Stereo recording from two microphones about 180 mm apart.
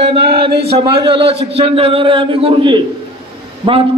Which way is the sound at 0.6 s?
30° right (ahead or behind).